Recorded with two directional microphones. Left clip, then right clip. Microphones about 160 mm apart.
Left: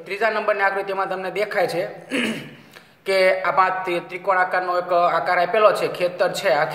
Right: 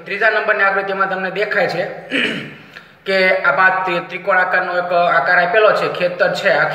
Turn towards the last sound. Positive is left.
turn(degrees=40)  # may be behind; listen again after turning